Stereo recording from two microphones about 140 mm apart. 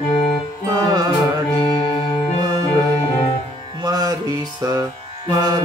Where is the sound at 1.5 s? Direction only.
35° left (ahead or behind).